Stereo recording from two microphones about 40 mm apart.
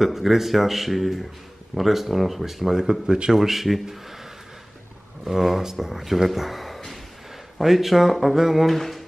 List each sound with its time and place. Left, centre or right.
0.0 s speech: centre
5.2 s speech: centre
8.7 s speech: centre